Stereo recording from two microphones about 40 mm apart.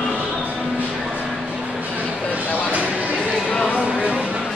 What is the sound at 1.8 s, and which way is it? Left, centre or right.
Music, right.